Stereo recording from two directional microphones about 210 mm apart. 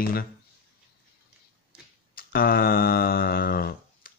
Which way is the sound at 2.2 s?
45° left (ahead or behind).